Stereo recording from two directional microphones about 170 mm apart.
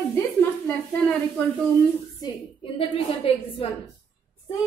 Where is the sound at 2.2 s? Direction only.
35° left (ahead or behind).